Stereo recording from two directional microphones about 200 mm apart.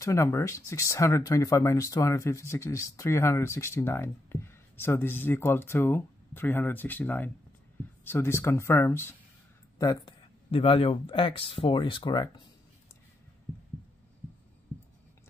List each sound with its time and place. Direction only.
0.0 s speech: 15° left (ahead or behind)